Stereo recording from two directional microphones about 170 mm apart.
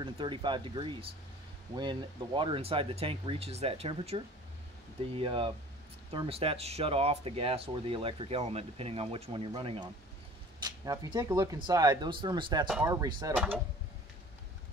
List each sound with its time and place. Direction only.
0.0 s speech: 30° right (ahead or behind)
13.3 s speech: 5° right (ahead or behind)